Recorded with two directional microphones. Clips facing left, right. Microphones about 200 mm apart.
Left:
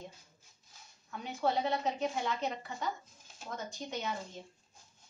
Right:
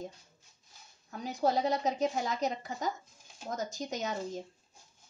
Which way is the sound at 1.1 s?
40° right (ahead or behind).